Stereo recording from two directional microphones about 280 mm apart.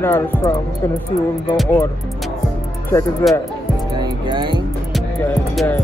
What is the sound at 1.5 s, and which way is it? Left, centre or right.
Speech, centre.